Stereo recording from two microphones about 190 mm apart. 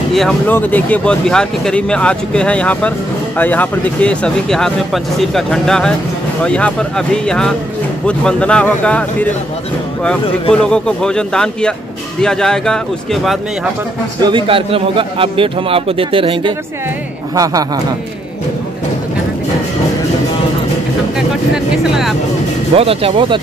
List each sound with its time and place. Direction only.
0.1 s speech: centre (ahead or behind)
10.5 s speech: 5° left (ahead or behind)
14.2 s a man's voice: 25° right (ahead or behind)
21.5 s speech: centre (ahead or behind)
22.8 s a man's voice: 30° right (ahead or behind)